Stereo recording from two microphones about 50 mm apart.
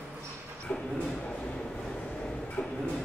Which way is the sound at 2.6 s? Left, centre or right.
Left.